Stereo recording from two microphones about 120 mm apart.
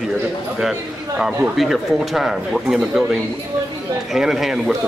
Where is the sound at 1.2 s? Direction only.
Centre (ahead or behind).